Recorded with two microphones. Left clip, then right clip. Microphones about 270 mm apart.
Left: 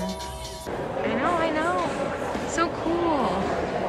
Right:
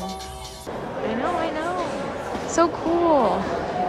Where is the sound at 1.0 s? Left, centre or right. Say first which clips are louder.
Even; centre.